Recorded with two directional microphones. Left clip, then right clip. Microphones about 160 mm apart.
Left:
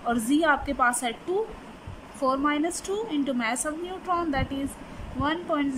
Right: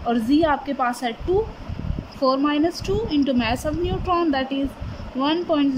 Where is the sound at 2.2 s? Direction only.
10° right (ahead or behind).